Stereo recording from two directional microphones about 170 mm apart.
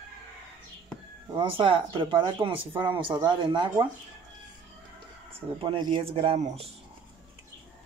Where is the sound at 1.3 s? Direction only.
30° right (ahead or behind).